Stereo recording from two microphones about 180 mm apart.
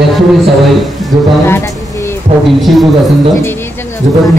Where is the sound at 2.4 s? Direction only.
Centre (ahead or behind).